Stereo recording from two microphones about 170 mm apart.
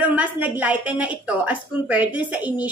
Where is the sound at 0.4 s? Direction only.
10° right (ahead or behind).